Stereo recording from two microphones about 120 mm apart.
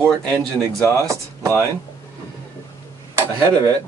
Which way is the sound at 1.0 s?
25° right (ahead or behind).